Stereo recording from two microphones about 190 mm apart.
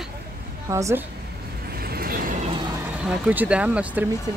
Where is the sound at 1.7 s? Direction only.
55° right (ahead or behind).